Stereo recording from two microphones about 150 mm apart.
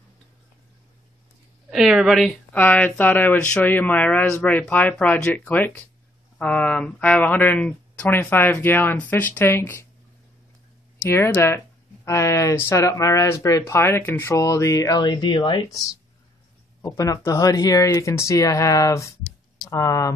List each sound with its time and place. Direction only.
1.7 s speech: centre (ahead or behind)
2.5 s speech: 10° left (ahead or behind)
11.0 s speech: 15° left (ahead or behind)
16.8 s speech: 25° left (ahead or behind)